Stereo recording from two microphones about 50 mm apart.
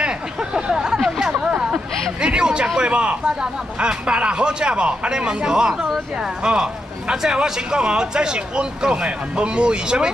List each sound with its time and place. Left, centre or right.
0.0 s vehicle: centre
1.4 s a sound: centre
2.2 s a man's voice: centre